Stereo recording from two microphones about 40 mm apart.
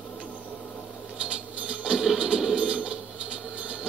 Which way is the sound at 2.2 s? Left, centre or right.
Right.